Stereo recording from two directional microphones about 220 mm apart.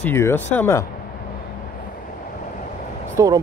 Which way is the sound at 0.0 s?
10° left (ahead or behind).